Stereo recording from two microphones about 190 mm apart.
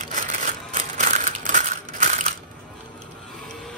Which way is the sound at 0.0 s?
40° right (ahead or behind).